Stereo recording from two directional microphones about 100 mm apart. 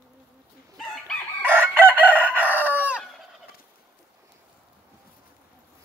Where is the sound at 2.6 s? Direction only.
15° right (ahead or behind).